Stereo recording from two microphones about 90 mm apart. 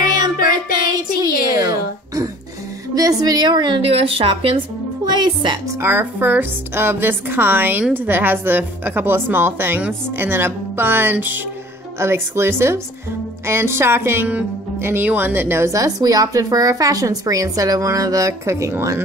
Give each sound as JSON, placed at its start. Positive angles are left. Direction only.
{"t": 0.8, "sound": "music", "side_deg": -45}
{"t": 2.9, "sound": "a woman's voice", "side_deg": -45}
{"t": 5.0, "sound": "a woman's voice", "side_deg": -55}
{"t": 5.8, "sound": "a woman's voice", "side_deg": -25}